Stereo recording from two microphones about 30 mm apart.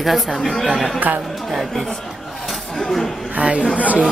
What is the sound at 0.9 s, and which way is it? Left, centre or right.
Speech, right.